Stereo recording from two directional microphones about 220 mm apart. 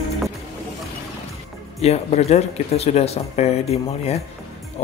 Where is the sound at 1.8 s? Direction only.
30° left (ahead or behind).